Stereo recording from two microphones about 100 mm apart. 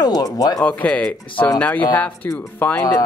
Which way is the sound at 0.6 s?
15° left (ahead or behind).